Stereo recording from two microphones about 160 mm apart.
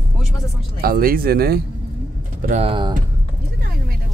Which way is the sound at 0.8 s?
65° right (ahead or behind).